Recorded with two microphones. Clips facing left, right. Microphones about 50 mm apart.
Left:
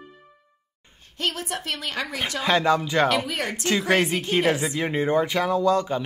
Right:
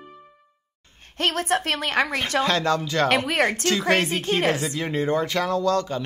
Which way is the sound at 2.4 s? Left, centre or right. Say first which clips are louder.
Left 2 dB; centre.